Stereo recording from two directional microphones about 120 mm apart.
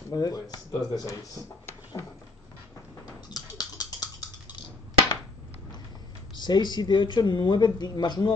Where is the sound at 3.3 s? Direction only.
35° left (ahead or behind).